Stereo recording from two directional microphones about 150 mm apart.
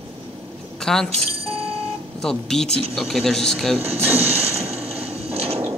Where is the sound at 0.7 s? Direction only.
5° left (ahead or behind).